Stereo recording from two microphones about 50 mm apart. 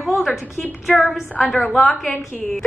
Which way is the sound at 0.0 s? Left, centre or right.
Centre.